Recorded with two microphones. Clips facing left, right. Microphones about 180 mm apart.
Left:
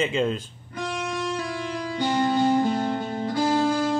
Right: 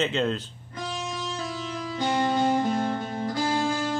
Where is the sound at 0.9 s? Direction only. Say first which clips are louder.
Left 4 dB; 65° left (ahead or behind).